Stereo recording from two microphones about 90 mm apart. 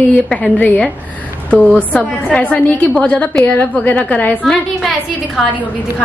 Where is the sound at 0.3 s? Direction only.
15° left (ahead or behind).